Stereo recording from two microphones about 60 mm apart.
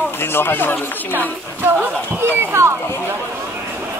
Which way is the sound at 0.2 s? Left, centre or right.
Left.